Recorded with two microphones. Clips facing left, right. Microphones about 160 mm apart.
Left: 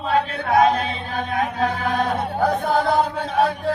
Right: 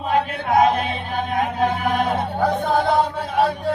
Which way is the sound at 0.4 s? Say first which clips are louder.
Even; 20° right (ahead or behind).